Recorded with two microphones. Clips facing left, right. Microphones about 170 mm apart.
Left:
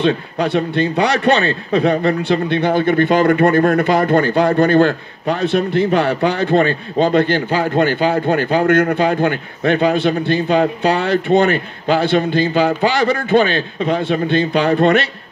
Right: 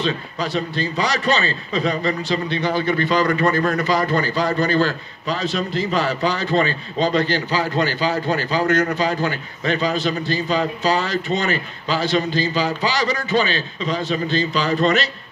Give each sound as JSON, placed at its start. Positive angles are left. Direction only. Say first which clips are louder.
{"t": 0.0, "sound": "speech", "louder": "left 7 dB", "side_deg": 60}